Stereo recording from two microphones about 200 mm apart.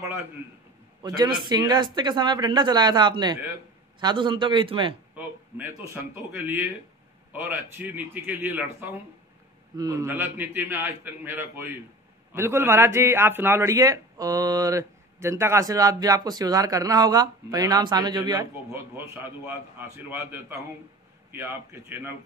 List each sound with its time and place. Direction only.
1.0 s speech: 20° right (ahead or behind)
5.1 s a man's voice: 10° right (ahead or behind)